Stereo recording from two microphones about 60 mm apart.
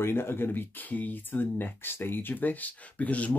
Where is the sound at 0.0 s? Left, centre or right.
Left.